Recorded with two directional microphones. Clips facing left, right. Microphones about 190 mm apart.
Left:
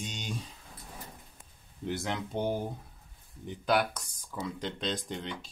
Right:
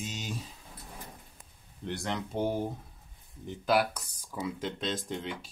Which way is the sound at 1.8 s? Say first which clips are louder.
Left 1 dB; centre (ahead or behind).